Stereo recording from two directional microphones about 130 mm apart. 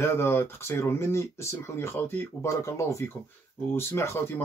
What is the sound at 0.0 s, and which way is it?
Speech, 20° left (ahead or behind).